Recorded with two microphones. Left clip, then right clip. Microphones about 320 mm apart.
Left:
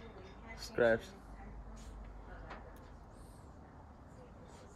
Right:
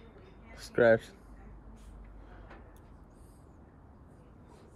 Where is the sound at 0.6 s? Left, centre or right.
Right.